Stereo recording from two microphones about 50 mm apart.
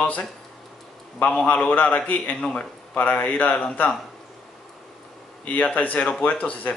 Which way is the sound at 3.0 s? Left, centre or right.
Left.